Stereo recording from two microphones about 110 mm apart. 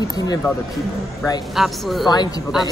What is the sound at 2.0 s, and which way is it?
Speech, 40° left (ahead or behind).